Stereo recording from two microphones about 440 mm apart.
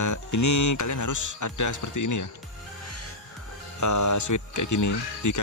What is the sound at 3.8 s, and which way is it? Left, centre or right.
Speech, left.